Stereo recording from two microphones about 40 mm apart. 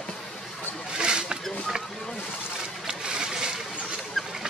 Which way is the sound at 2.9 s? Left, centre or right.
Centre.